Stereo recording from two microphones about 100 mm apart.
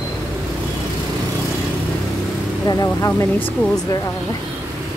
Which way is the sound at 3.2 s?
20° left (ahead or behind).